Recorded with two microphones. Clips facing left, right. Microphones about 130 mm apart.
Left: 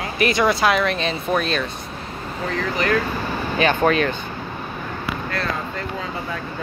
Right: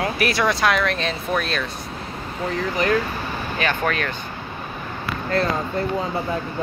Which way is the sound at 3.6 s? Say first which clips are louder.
Left 6 dB; 25° left (ahead or behind).